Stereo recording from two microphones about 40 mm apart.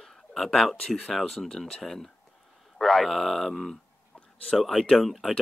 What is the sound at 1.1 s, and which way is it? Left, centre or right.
Speech, centre.